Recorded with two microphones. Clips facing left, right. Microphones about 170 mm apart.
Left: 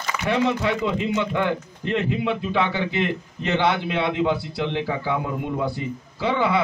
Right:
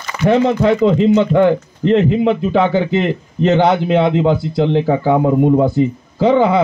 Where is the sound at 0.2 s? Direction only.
45° right (ahead or behind).